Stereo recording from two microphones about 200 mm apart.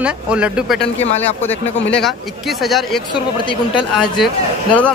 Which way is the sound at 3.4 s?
25° left (ahead or behind).